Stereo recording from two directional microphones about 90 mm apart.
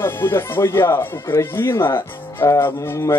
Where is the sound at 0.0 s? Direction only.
25° left (ahead or behind).